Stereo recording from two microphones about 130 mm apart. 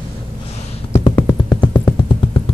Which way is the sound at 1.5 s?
35° left (ahead or behind).